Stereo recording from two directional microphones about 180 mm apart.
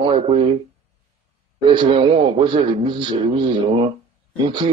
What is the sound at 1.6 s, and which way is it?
A man's voice, 25° right (ahead or behind).